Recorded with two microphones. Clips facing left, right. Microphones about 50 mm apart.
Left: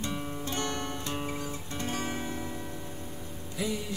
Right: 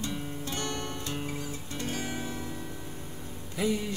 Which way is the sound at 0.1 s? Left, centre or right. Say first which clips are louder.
Left 1 dB; centre.